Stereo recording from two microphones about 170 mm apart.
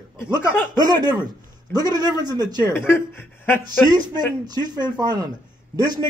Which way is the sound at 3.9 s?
25° right (ahead or behind).